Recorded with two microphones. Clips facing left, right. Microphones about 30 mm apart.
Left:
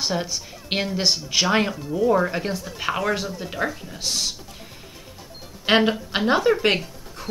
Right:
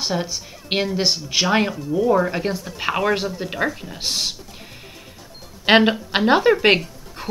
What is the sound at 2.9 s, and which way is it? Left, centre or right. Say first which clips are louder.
A woman's voice: right 4 dB; right.